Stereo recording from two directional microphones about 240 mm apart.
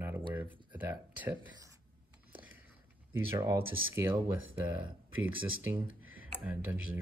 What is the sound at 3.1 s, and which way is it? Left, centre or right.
Speech, centre.